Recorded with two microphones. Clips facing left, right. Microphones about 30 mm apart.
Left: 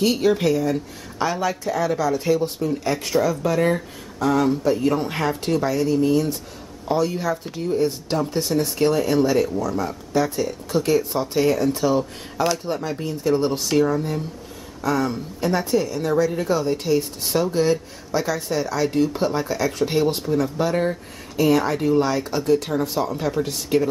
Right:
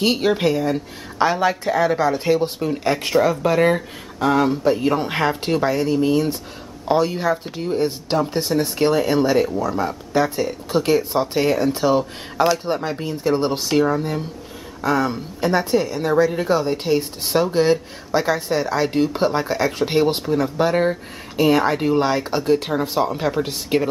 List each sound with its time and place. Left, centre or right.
0.0 s speech: right